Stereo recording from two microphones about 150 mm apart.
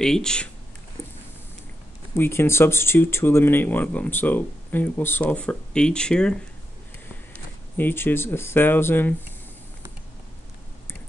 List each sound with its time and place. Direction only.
0.0 s speech: 5° left (ahead or behind)
1.0 s a sound: 15° left (ahead or behind)
2.1 s speech: 15° left (ahead or behind)
7.7 s speech: 15° left (ahead or behind)